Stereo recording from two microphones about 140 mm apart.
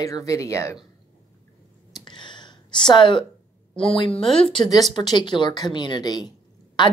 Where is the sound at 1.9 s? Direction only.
35° left (ahead or behind).